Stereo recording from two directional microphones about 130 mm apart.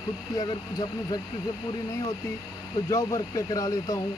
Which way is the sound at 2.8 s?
25° left (ahead or behind).